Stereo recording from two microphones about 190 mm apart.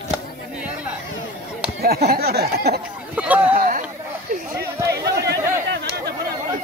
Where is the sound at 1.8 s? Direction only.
55° right (ahead or behind).